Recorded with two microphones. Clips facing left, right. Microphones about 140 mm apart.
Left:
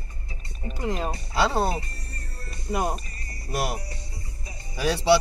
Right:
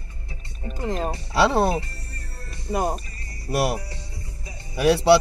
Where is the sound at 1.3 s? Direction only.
70° right (ahead or behind).